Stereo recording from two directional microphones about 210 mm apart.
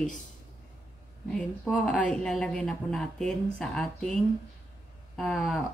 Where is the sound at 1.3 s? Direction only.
5° left (ahead or behind).